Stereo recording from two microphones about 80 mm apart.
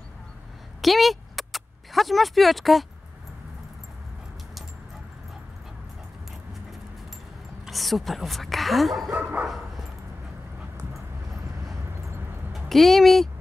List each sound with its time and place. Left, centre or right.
0.7 s a sound: centre
7.6 s speech: centre
9.1 s dog: centre
12.5 s speech: centre